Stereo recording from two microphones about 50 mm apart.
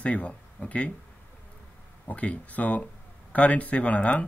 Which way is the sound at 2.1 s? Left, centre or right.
Left.